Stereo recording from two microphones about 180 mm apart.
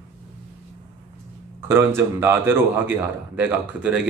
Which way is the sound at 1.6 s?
15° right (ahead or behind).